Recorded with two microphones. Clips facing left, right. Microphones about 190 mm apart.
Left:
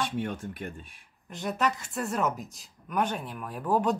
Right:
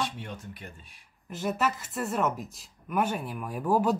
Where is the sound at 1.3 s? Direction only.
5° right (ahead or behind).